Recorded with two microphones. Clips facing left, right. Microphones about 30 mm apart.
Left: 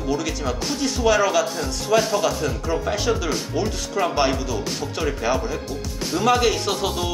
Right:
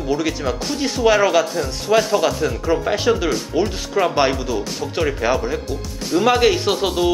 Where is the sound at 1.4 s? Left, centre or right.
Centre.